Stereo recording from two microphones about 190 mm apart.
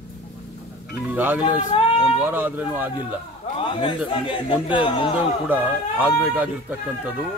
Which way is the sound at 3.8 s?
25° left (ahead or behind).